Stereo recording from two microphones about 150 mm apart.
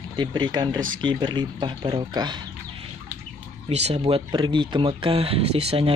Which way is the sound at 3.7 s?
45° right (ahead or behind).